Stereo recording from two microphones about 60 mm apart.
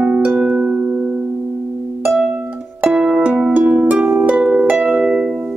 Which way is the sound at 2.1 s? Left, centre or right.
Centre.